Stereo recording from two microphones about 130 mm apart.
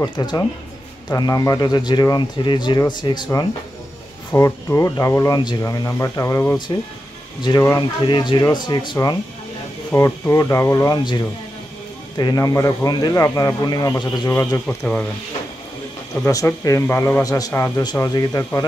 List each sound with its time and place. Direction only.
0.0 s speech: 30° left (ahead or behind)
4.3 s speech: 20° left (ahead or behind)
8.0 s speech: 35° left (ahead or behind)
14.3 s speech: 20° left (ahead or behind)
14.7 s speech: 5° left (ahead or behind)
16.3 s speech: 25° left (ahead or behind)